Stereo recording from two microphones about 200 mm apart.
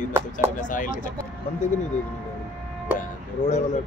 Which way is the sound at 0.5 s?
40° left (ahead or behind).